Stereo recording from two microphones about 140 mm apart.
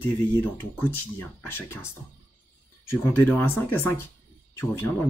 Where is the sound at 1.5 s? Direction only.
15° left (ahead or behind).